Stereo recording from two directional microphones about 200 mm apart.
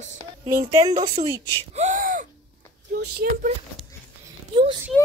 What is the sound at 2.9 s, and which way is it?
Speech, 55° right (ahead or behind).